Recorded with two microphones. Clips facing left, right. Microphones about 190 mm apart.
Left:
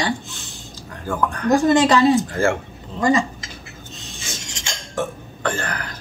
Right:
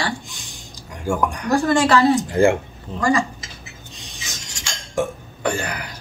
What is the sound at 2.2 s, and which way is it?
Speech, 15° right (ahead or behind).